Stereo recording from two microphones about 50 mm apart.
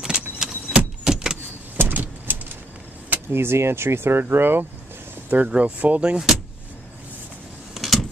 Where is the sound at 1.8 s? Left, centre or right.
Right.